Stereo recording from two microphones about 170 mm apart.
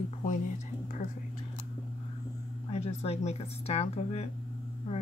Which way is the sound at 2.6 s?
35° left (ahead or behind).